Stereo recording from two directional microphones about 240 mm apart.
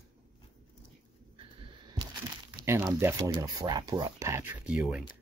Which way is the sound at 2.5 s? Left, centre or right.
Centre.